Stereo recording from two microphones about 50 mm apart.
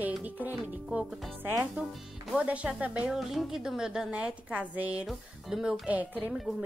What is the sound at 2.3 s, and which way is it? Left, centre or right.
Speech, right.